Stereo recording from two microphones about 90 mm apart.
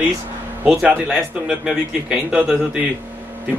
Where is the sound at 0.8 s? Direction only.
10° right (ahead or behind).